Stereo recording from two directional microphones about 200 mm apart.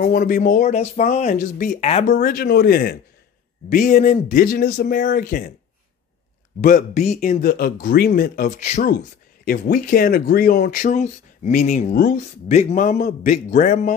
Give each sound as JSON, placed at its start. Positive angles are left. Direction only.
{"t": 0.0, "sound": "speech", "side_deg": 45}
{"t": 3.7, "sound": "speech", "side_deg": 40}
{"t": 6.6, "sound": "speech", "side_deg": 40}
{"t": 8.9, "sound": "a man's voice", "side_deg": 50}